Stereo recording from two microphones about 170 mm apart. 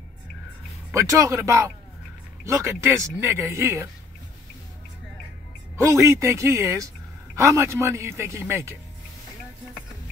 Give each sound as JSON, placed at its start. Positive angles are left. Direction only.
{"t": 0.9, "sound": "a man's voice", "side_deg": -20}
{"t": 5.8, "sound": "a man's voice", "side_deg": -15}